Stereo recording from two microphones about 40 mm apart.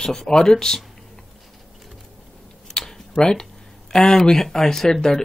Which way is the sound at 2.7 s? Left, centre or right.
Centre.